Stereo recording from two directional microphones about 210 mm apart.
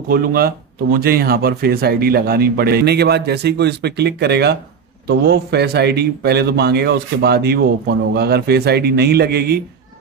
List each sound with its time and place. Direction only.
0.1 s speech: 45° right (ahead or behind)